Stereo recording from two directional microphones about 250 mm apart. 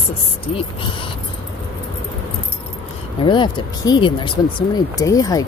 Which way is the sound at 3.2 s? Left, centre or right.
Centre.